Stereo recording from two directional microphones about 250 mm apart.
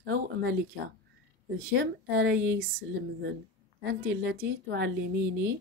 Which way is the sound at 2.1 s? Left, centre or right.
Right.